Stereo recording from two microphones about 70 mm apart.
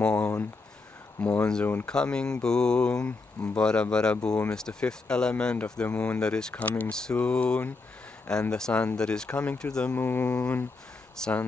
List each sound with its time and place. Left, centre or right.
0.0 s a sound: centre
1.2 s speech: centre
9.9 s speech: left